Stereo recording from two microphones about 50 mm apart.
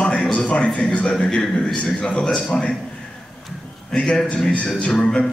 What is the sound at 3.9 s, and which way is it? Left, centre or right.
A man's voice, centre.